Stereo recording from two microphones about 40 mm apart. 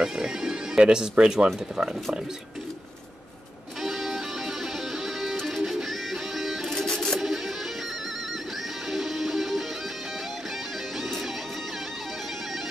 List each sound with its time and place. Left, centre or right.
0.0 s music: centre
3.8 s music: centre
6.9 s music: centre
7.2 s music: centre
8.9 s music: centre